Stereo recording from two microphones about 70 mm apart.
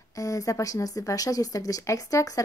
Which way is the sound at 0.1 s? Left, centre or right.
Left.